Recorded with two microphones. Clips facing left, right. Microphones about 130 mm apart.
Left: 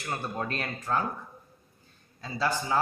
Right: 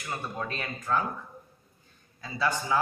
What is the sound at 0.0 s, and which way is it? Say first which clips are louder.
Speech: left 2 dB; 30° left (ahead or behind).